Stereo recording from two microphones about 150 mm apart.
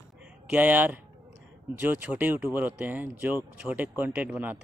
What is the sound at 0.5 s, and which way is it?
Speech, 10° right (ahead or behind).